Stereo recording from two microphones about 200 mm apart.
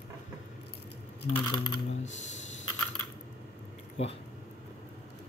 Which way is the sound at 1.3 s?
20° left (ahead or behind).